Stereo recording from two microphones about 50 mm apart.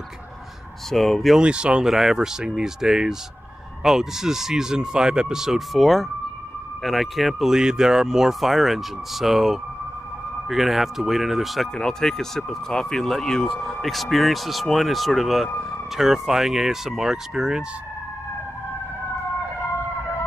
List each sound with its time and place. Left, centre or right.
0.8 s speech: centre
1.4 s speech: centre
1.9 s speech: centre
11.7 s speech: centre